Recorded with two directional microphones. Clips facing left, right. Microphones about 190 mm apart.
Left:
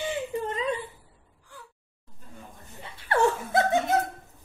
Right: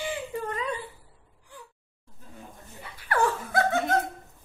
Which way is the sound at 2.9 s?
25° left (ahead or behind).